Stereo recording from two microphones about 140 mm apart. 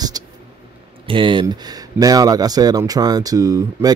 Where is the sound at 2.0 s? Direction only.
25° right (ahead or behind).